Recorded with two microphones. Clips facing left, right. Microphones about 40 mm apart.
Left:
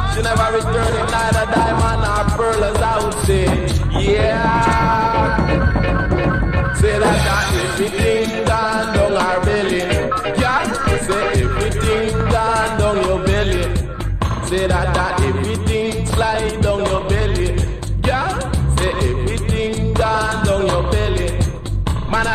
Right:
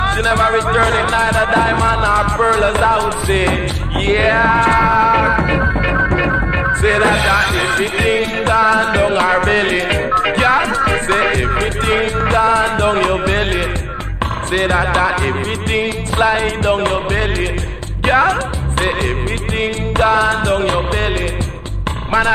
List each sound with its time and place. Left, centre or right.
0.0 s speech: right
1.1 s music: right
7.4 s music: centre
7.7 s music: right
10.1 s music: right